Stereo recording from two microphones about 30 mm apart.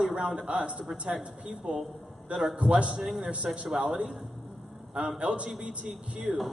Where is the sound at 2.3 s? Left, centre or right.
Right.